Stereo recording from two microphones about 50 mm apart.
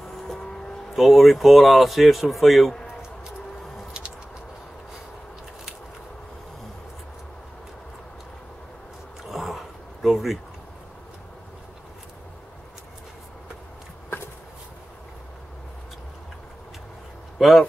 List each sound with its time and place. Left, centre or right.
0.3 s vehicle: centre
0.8 s speech: centre
9.3 s a sound: centre
17.4 s speech: centre